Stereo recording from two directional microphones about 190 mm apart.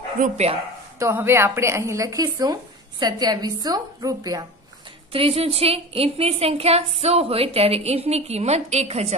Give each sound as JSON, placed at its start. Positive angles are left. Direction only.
{"t": 0.2, "sound": "a woman's voice", "side_deg": -35}
{"t": 0.9, "sound": "a woman's voice", "side_deg": -15}